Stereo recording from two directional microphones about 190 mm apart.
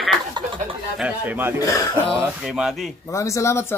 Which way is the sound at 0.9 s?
5° right (ahead or behind).